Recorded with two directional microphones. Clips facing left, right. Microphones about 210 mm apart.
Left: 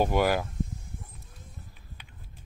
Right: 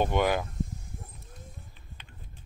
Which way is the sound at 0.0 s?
5° left (ahead or behind).